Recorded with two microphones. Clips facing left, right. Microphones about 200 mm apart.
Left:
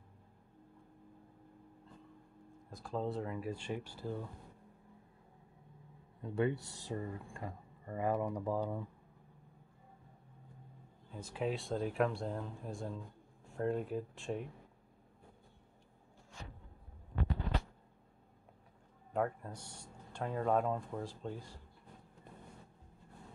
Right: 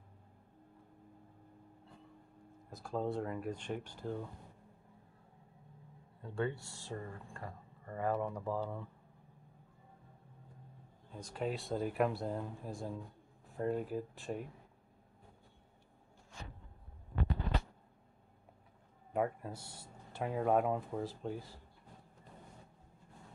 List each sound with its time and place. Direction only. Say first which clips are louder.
2.7 s speech: right 1 dB; centre (ahead or behind)
6.2 s speech: left 3 dB; 20° left (ahead or behind)
11.1 s speech: left 1 dB; 5° left (ahead or behind)
19.1 s speech: right 1 dB; 5° right (ahead or behind)